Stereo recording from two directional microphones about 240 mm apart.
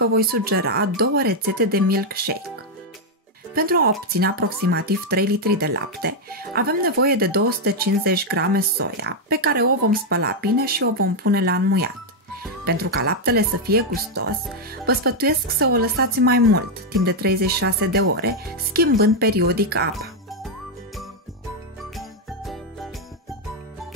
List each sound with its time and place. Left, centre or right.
0.0 s speech: right
3.5 s speech: right
21.9 s jingle: centre